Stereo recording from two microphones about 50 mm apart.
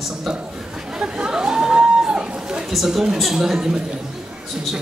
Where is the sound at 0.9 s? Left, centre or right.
Centre.